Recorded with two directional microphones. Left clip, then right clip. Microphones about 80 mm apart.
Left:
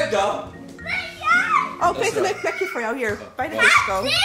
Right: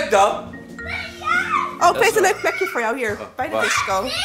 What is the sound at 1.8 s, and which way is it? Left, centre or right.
Speech, centre.